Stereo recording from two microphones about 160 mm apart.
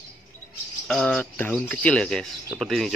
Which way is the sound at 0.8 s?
5° left (ahead or behind).